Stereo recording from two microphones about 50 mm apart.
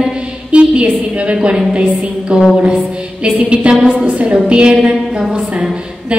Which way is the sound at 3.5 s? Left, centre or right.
Right.